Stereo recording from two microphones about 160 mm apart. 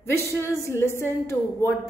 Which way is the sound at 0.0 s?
15° left (ahead or behind).